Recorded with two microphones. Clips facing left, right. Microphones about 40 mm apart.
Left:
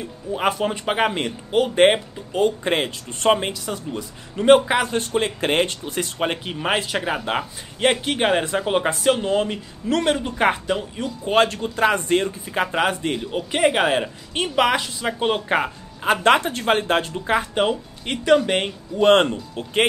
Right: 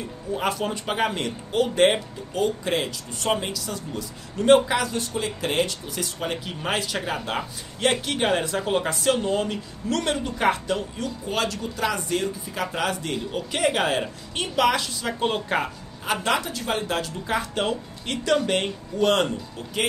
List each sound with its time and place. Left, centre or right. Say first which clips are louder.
0.3 s speech: left 4 dB; left
11.2 s speech: left 9 dB; left
16.0 s speech: left 7 dB; left